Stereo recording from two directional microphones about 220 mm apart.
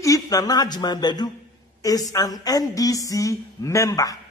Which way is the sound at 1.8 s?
15° left (ahead or behind).